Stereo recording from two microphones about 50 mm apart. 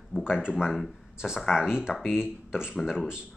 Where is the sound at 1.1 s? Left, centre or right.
Centre.